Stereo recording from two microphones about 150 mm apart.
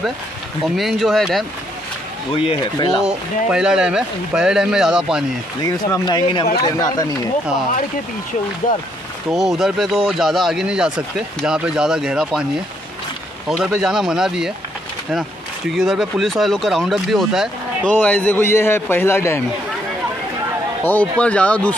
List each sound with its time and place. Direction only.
0.7 s speech: centre (ahead or behind)
2.3 s speech: 35° left (ahead or behind)
3.0 s speech: 5° right (ahead or behind)
5.6 s speech: 25° left (ahead or behind)
8.6 s speech: 65° left (ahead or behind)
9.3 s speech: centre (ahead or behind)
13.7 s speech: 5° right (ahead or behind)
15.8 s speech: centre (ahead or behind)
17.9 s a man's voice: 10° left (ahead or behind)
20.8 s a man's voice: 10° left (ahead or behind)